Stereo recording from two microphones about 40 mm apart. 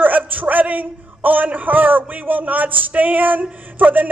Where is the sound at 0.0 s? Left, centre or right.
Right.